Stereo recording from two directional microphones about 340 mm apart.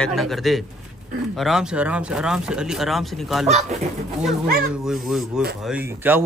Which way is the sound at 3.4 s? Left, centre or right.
Centre.